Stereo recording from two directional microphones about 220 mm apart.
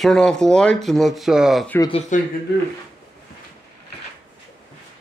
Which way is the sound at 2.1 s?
35° left (ahead or behind).